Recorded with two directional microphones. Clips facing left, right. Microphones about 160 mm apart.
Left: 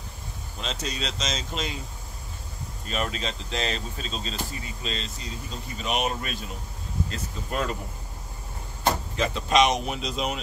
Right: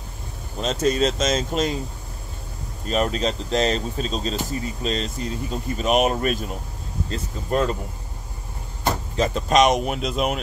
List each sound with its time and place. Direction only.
0.6 s a man's voice: 45° right (ahead or behind)
2.9 s speech: 40° right (ahead or behind)
7.1 s speech: 35° right (ahead or behind)
9.1 s a man's voice: 40° right (ahead or behind)